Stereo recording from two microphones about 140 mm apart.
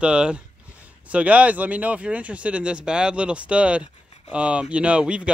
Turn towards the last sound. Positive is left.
turn(degrees=-10)  # may be behind; listen again after turning